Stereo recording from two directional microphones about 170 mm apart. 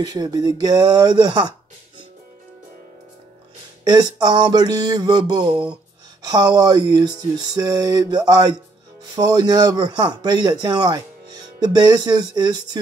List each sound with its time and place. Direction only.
0.0 s speech: 20° right (ahead or behind)
3.8 s speech: 25° right (ahead or behind)
5.5 s speech: 5° right (ahead or behind)
6.2 s speech: 20° right (ahead or behind)